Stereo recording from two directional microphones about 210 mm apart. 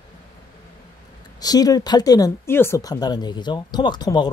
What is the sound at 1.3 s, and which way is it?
Speech, 20° left (ahead or behind).